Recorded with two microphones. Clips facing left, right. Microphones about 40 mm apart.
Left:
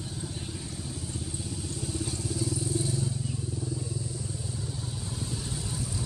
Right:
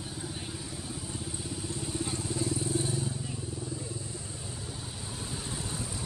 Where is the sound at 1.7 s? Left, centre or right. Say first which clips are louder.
Right 1 dB; right.